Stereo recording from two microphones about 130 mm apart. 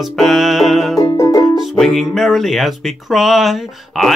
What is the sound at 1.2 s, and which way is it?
Music, 30° left (ahead or behind).